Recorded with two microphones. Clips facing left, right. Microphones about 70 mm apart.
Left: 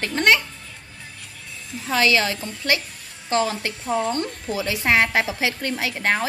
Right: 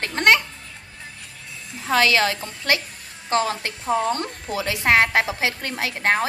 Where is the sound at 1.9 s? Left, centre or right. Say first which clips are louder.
Right 1 dB; right.